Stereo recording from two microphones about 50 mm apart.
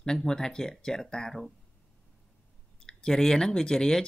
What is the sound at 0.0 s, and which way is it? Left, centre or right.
Speech, centre.